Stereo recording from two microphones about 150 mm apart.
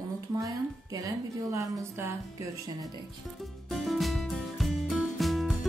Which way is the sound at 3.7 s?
Centre (ahead or behind).